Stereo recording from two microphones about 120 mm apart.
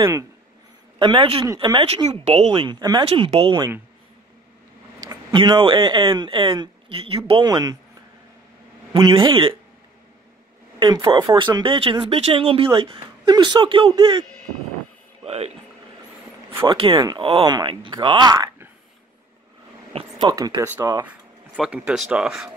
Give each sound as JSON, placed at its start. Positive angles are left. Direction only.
{"t": 0.9, "sound": "a man's voice", "side_deg": -45}
{"t": 2.0, "sound": "speech", "side_deg": -55}
{"t": 2.8, "sound": "speech", "side_deg": -35}
{"t": 3.1, "sound": "speech", "side_deg": -50}
{"t": 5.0, "sound": "speech", "side_deg": -35}
{"t": 7.4, "sound": "speech", "side_deg": -35}
{"t": 9.1, "sound": "speech", "side_deg": -45}
{"t": 10.8, "sound": "speech", "side_deg": -40}
{"t": 13.8, "sound": "speech", "side_deg": -35}
{"t": 15.2, "sound": "speech", "side_deg": -60}
{"t": 16.6, "sound": "speech", "side_deg": -45}
{"t": 17.5, "sound": "speech", "side_deg": -40}
{"t": 19.9, "sound": "speech", "side_deg": -45}
{"t": 21.1, "sound": "speech", "side_deg": -10}